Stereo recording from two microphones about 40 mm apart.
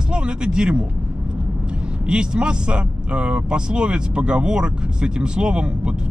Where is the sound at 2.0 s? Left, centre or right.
Right.